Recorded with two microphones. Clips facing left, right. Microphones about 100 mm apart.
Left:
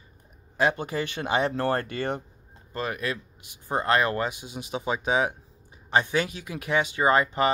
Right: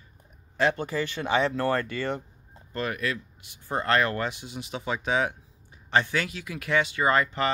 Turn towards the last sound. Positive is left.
turn(degrees=15)  # may be behind; listen again after turning